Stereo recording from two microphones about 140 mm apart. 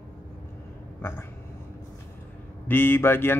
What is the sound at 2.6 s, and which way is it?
Speech, 15° left (ahead or behind).